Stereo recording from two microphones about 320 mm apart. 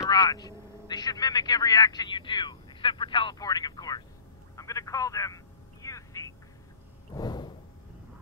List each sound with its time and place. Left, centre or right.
0.0 s speech: centre
4.6 s telephone: centre
7.2 s a sound: centre